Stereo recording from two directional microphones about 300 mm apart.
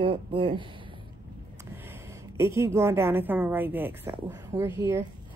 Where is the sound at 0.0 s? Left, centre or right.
Centre.